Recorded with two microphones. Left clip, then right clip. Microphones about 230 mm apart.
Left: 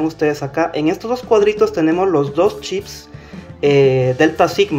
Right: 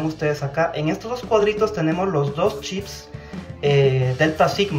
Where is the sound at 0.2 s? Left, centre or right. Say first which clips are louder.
Left 3 dB; left.